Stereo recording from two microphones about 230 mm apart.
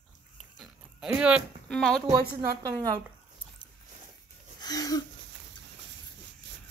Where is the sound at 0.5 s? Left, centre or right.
Centre.